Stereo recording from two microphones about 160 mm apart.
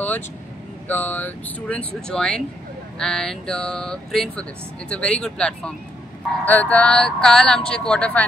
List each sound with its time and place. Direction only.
0.8 s speech: 10° left (ahead or behind)